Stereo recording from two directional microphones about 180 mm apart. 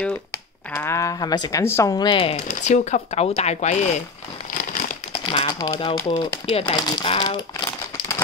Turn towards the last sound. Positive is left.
turn(degrees=25)  # may be behind; listen again after turning